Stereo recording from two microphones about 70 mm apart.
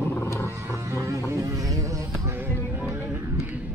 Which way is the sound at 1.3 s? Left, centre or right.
Right.